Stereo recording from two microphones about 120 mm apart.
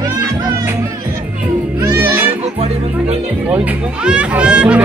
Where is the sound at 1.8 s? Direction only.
20° right (ahead or behind).